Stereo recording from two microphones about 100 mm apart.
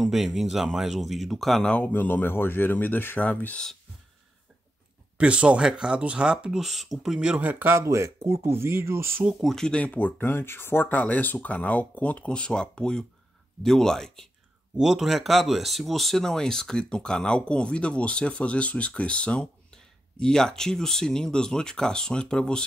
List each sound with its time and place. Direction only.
0.0 s speech: centre (ahead or behind); by 3.6 s 15° left (ahead or behind)
5.1 s speech: 10° right (ahead or behind)
9.4 s speech: 5° left (ahead or behind)